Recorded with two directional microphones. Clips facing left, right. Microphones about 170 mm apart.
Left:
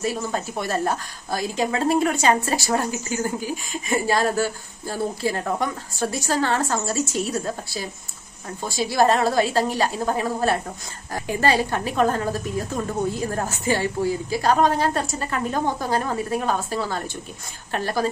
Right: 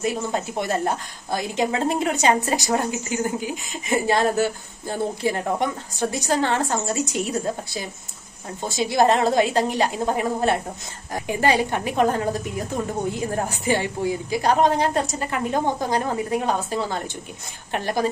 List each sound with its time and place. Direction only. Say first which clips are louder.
0.0 s a woman's voice: right 1 dB; 20° right (ahead or behind)
8.6 s a woman's voice: right 1 dB; 20° right (ahead or behind)